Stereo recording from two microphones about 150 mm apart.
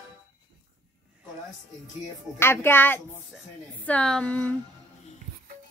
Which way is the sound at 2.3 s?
15° left (ahead or behind).